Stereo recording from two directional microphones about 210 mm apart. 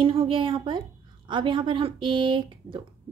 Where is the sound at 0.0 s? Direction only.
25° right (ahead or behind).